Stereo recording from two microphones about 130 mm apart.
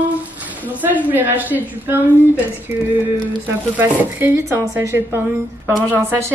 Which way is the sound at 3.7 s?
15° right (ahead or behind).